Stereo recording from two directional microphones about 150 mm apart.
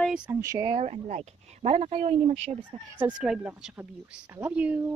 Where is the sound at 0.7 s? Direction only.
45° right (ahead or behind).